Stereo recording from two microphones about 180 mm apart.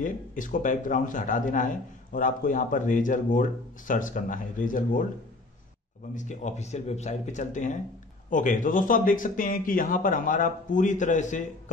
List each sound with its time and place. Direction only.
0.0 s speech: 50° left (ahead or behind)
6.1 s speech: 40° left (ahead or behind)